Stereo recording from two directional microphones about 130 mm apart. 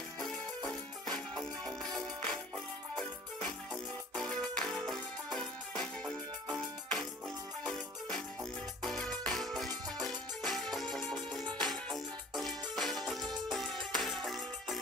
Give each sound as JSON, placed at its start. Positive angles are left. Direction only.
{"t": 0.7, "sound": "music", "side_deg": 0}
{"t": 9.7, "sound": "music", "side_deg": -30}
{"t": 10.0, "sound": "music", "side_deg": 0}